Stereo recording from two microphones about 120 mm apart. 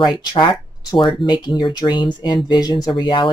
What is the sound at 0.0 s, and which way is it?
Speech, 40° left (ahead or behind).